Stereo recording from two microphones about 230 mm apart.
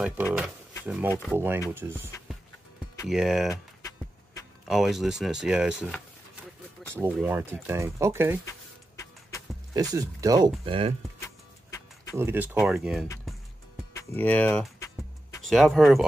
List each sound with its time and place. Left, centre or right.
0.0 s speech: centre
1.1 s speech: centre
1.7 s speech: centre
3.1 s speech: centre
3.4 s music: centre
4.6 s speech: centre
7.0 s speech: centre
8.5 s a sound: centre
9.8 s speech: centre
11.2 s music: centre
12.2 s speech: centre
13.9 s music: centre
15.4 s speech: centre